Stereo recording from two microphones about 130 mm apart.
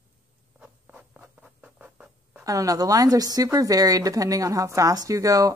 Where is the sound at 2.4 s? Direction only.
25° right (ahead or behind).